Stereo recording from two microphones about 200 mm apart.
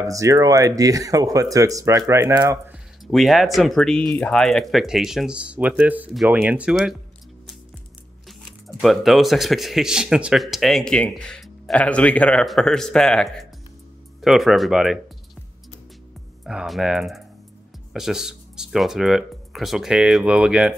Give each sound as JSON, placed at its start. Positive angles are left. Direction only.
{"t": 0.0, "sound": "speech", "side_deg": -15}
{"t": 3.1, "sound": "speech", "side_deg": 0}
{"t": 8.3, "sound": "speech", "side_deg": 0}
{"t": 16.4, "sound": "speech", "side_deg": 0}